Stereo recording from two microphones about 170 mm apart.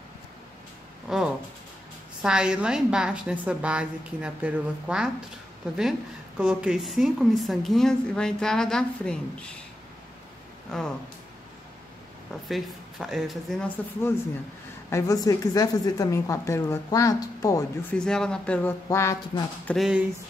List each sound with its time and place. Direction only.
1.0 s a woman's voice: 5° right (ahead or behind)
10.7 s a woman's voice: 5° left (ahead or behind)
12.4 s a woman's voice: centre (ahead or behind)
14.9 s a woman's voice: 20° left (ahead or behind)
17.9 s speech: 5° left (ahead or behind)
19.7 s a woman's voice: 5° right (ahead or behind)